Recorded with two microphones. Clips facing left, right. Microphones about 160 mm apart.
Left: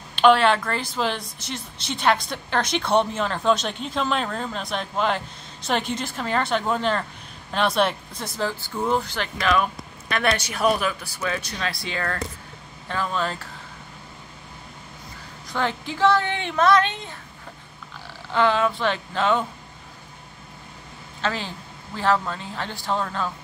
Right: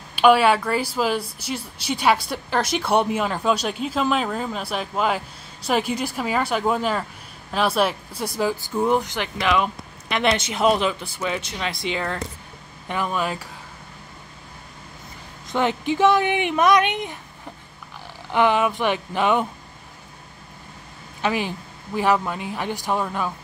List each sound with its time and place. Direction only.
0.1 s speech: 10° right (ahead or behind)
15.5 s speech: 20° right (ahead or behind)
18.3 s speech: 15° right (ahead or behind)
21.2 s speech: 15° right (ahead or behind)